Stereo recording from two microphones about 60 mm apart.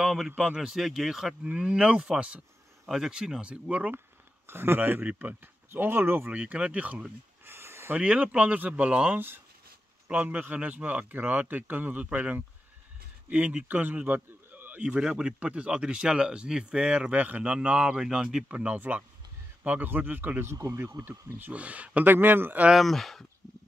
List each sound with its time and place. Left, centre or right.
0.0 s a sound: centre
0.4 s speech: centre
1.5 s speech: centre
4.5 s speech: right
6.3 s speech: right
7.4 s a sound: right
7.9 s a man's voice: right
14.8 s speech: centre
18.7 s speech: right
20.5 s speech: right
21.4 s speech: right
22.0 s speech: right
22.8 s speech: centre